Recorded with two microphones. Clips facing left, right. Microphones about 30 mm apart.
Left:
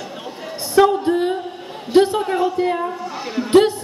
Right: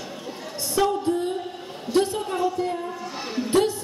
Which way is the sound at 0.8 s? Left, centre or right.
Left.